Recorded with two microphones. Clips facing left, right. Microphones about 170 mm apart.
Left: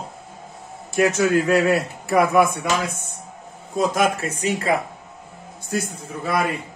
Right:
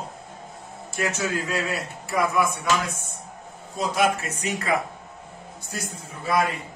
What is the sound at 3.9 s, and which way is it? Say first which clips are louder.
Speech: right 3 dB; 45° left (ahead or behind).